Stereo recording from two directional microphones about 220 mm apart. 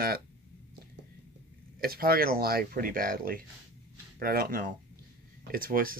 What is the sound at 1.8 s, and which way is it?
Speech, 45° right (ahead or behind).